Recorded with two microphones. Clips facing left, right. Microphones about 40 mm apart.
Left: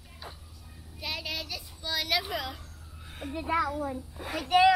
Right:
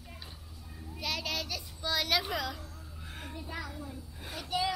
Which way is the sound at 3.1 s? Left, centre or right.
Centre.